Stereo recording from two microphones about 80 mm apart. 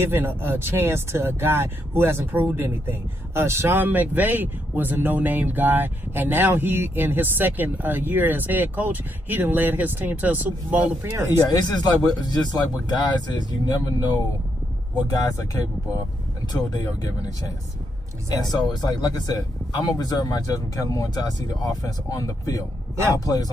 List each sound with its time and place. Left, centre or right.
0.0 s speech: right
11.4 s speech: left
15.0 s speech: left
18.5 s speech: left